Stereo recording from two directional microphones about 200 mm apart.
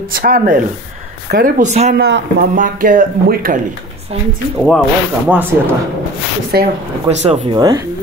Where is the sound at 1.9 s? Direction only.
55° right (ahead or behind).